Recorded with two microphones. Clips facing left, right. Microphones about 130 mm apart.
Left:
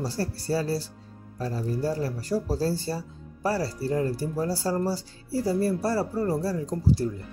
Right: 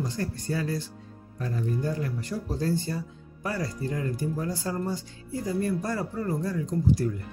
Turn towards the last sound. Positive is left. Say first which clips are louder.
# even
turn(degrees=30)  # may be behind; listen again after turning